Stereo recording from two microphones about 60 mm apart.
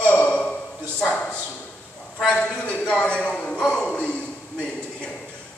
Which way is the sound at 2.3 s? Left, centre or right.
Centre.